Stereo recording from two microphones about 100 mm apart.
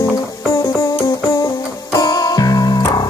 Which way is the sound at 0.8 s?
40° left (ahead or behind).